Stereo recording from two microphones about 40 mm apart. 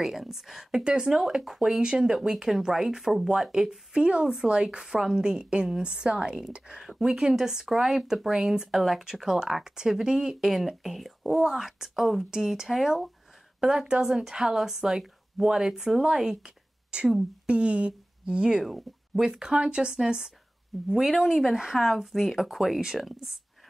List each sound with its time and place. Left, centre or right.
0.0 s speech: centre
0.7 s speech: centre
3.5 s a woman's voice: centre
16.9 s a woman's voice: right
18.6 s speech: centre